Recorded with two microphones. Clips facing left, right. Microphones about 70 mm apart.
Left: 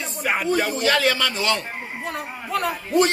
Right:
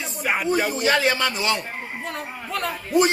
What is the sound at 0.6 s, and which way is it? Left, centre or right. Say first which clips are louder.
A man's voice: even; centre.